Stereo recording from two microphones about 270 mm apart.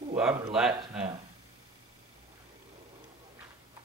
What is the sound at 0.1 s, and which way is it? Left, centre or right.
Speech, centre.